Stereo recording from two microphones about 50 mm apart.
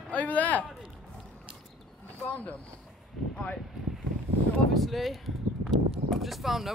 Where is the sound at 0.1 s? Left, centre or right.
Left.